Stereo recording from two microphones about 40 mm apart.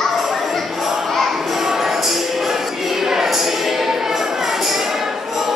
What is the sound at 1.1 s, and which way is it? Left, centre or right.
Music, centre.